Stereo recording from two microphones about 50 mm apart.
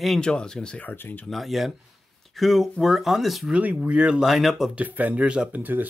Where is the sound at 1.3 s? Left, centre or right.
Centre.